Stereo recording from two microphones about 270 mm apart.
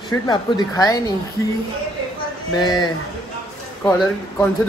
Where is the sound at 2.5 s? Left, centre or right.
Centre.